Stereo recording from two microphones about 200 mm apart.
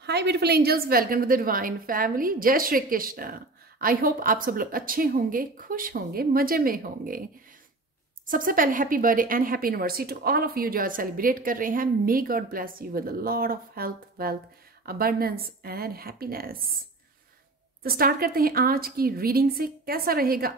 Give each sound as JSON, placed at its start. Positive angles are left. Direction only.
{"t": 0.0, "sound": "a woman's voice", "side_deg": -55}
{"t": 8.3, "sound": "a woman's voice", "side_deg": -45}
{"t": 17.8, "sound": "a woman's voice", "side_deg": -50}